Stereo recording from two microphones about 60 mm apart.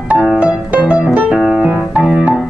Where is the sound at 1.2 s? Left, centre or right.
Centre.